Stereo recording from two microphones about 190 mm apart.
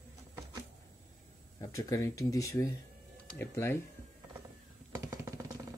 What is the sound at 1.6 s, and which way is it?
Speech, 15° left (ahead or behind).